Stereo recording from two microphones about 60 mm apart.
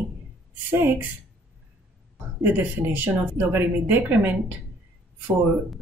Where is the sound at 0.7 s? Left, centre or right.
Right.